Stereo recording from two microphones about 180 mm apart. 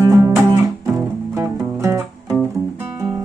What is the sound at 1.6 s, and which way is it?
Music, 15° right (ahead or behind).